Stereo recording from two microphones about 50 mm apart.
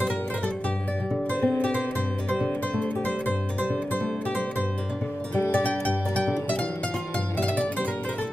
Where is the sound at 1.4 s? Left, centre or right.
Left.